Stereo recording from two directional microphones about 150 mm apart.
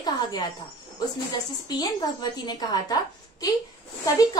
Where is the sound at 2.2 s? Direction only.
25° left (ahead or behind).